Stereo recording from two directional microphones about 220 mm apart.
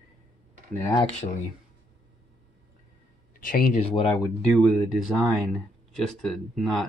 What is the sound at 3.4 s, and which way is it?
Speech, 40° left (ahead or behind).